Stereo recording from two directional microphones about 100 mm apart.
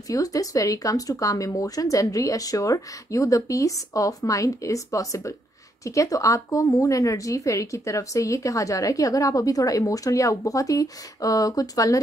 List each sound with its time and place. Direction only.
0.1 s speech: 35° left (ahead or behind)